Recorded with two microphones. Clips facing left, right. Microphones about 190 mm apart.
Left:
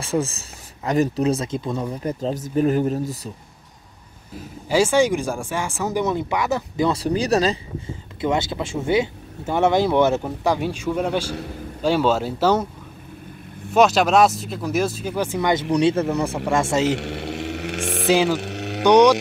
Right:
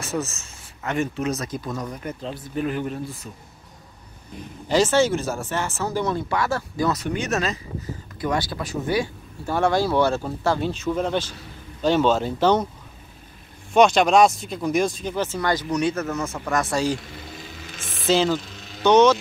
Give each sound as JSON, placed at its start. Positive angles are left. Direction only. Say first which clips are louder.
{"t": 0.0, "sound": "speech", "louder": "left 4 dB", "side_deg": 30}
{"t": 4.4, "sound": "speech", "louder": "left 1 dB", "side_deg": 10}
{"t": 8.2, "sound": "speech", "louder": "left 3 dB", "side_deg": 25}
{"t": 13.7, "sound": "speech", "louder": "even", "side_deg": 5}
{"t": 15.7, "sound": "speech", "louder": "left 5 dB", "side_deg": 30}
{"t": 16.9, "sound": "a sound", "louder": "left 6 dB", "side_deg": 75}
{"t": 18.1, "sound": "speech", "louder": "left 1 dB", "side_deg": 10}
{"t": 18.4, "sound": "a sound", "louder": "left 12 dB", "side_deg": 70}
{"t": 18.9, "sound": "speech", "louder": "left 2 dB", "side_deg": 15}